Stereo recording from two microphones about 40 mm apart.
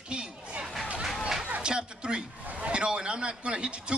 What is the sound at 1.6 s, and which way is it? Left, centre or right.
Music, right.